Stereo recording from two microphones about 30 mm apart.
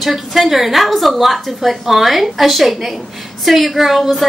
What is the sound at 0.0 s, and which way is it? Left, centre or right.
A woman's voice, centre.